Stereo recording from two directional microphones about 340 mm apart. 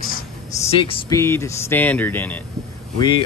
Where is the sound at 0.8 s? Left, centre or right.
Centre.